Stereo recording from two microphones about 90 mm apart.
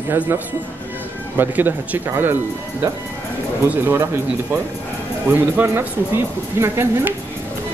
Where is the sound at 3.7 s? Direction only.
25° right (ahead or behind).